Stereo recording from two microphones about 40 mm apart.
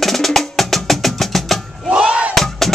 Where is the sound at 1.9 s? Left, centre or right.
Right.